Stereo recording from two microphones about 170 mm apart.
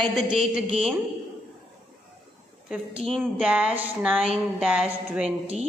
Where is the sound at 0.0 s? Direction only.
Centre (ahead or behind).